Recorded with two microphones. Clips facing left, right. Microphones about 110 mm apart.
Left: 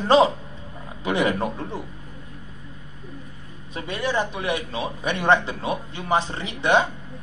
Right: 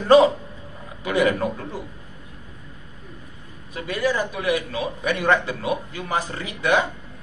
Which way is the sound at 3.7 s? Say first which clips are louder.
Right 3 dB; 25° left (ahead or behind).